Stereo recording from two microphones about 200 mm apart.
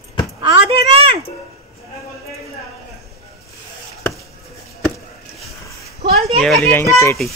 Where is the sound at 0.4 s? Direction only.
25° right (ahead or behind).